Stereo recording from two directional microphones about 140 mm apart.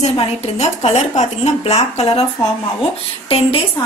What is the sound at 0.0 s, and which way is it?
Speech, 50° left (ahead or behind).